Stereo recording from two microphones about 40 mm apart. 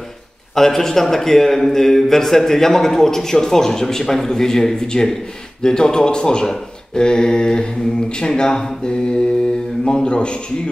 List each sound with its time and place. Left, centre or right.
0.6 s a man's voice: centre; by 10.4 s left